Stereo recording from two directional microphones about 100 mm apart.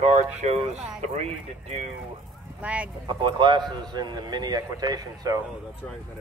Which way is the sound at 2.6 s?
15° right (ahead or behind).